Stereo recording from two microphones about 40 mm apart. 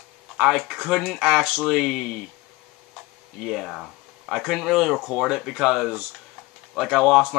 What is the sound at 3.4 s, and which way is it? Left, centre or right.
Speech, centre.